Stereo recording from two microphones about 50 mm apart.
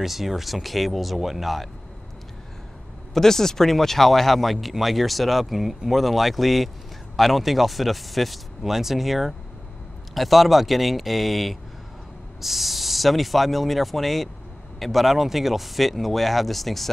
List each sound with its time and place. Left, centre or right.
0.0 s speech: centre
3.2 s speech: centre